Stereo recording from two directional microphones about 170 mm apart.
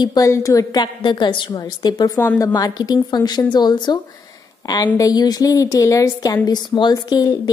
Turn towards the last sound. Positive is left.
turn(degrees=25)  # may be behind; listen again after turning